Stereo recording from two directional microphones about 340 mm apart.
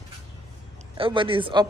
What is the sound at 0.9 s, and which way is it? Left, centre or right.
Speech, centre.